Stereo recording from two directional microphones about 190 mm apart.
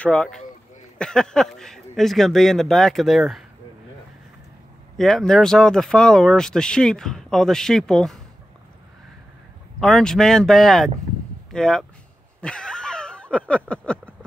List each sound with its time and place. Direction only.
0.0 s speech: 5° left (ahead or behind)
4.9 s speech: centre (ahead or behind)
9.8 s speech: 5° left (ahead or behind)
12.4 s a sound: 5° left (ahead or behind)